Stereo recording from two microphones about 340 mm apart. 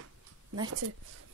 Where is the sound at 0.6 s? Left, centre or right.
Right.